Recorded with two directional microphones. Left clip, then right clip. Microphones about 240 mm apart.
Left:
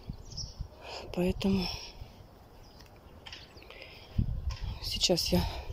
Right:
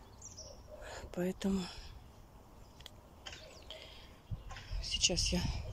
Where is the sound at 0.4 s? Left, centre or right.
Centre.